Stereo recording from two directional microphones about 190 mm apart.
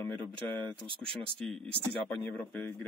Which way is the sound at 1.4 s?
5° left (ahead or behind).